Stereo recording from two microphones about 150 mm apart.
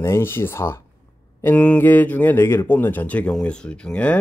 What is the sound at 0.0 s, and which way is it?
Speech, 15° left (ahead or behind).